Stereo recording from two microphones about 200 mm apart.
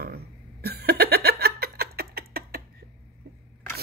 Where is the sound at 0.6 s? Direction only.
50° right (ahead or behind).